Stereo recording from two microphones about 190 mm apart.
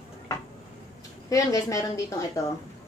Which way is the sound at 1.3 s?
15° left (ahead or behind).